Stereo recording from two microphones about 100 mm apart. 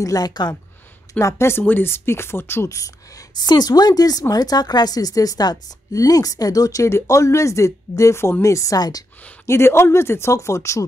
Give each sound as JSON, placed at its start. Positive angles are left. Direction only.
{"t": 0.0, "sound": "speech", "side_deg": 40}
{"t": 1.1, "sound": "speech", "side_deg": 25}
{"t": 9.5, "sound": "speech", "side_deg": 25}